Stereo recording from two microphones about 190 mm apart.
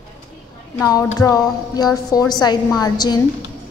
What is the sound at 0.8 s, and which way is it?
A woman's voice, 15° left (ahead or behind).